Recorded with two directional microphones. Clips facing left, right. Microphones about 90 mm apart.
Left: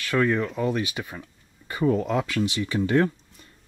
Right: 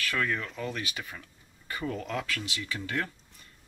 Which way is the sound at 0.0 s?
20° left (ahead or behind).